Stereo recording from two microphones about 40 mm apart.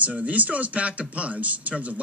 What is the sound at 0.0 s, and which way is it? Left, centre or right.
Speech, right.